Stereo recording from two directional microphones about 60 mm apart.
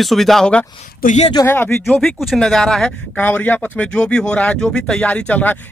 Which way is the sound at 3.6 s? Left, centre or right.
Centre.